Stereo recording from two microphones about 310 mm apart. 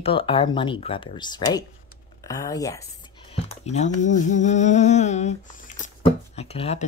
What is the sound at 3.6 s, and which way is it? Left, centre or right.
Speech, left.